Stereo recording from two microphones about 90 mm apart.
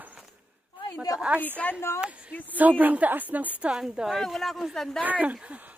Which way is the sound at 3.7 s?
5° right (ahead or behind).